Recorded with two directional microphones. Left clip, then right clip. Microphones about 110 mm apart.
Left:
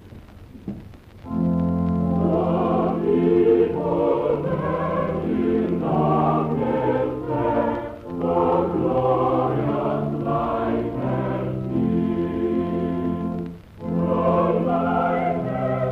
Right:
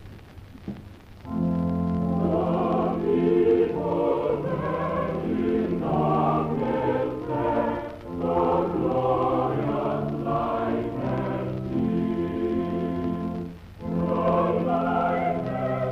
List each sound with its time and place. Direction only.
2.0 s music: 30° right (ahead or behind)